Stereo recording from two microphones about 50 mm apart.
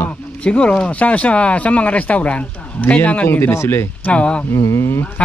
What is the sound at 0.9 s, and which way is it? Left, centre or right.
Speech, left.